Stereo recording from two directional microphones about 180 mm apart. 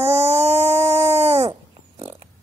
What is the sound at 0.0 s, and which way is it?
Dog, 35° right (ahead or behind).